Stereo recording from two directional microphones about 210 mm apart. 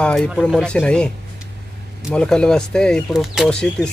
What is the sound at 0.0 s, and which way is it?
Speech, 5° left (ahead or behind).